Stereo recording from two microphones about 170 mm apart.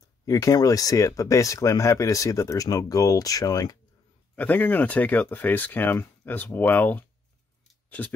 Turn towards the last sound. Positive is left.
turn(degrees=10)  # may be behind; listen again after turning